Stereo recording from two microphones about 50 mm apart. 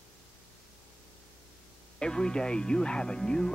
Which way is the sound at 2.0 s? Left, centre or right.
Centre.